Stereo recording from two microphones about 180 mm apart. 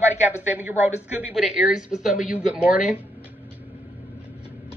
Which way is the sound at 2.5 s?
5° right (ahead or behind).